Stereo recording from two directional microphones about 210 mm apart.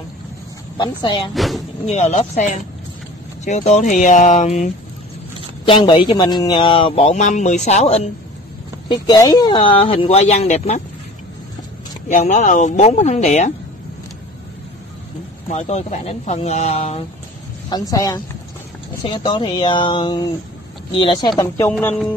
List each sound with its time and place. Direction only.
0.7 s speech: 20° left (ahead or behind)
1.3 s speech: centre (ahead or behind)
1.9 s speech: 30° left (ahead or behind)
5.7 s speech: 25° left (ahead or behind)
8.8 s speech: 20° left (ahead or behind)
12.1 s speech: 35° left (ahead or behind)
15.4 s speech: 35° left (ahead or behind)
17.6 s a sound: 15° left (ahead or behind)
19.0 s speech: 20° left (ahead or behind)
21.4 s a sound: 10° left (ahead or behind)